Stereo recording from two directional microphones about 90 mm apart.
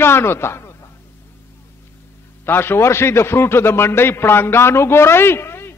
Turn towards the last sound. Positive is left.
turn(degrees=25)  # may be behind; listen again after turning